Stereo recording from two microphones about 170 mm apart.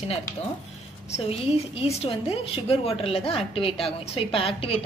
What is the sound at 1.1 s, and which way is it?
A woman's voice, 35° left (ahead or behind).